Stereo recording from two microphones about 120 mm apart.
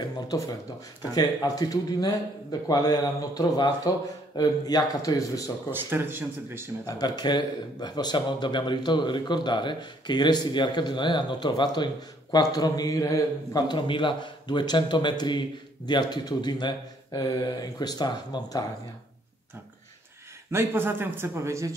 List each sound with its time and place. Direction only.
0.3 s speech: 35° left (ahead or behind)
5.7 s speech: 15° right (ahead or behind)
6.9 s speech: 35° left (ahead or behind)
20.5 s a man's voice: 15° right (ahead or behind)